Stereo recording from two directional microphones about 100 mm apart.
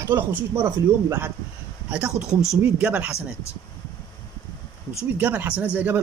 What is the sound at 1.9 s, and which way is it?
A man's voice, 5° right (ahead or behind).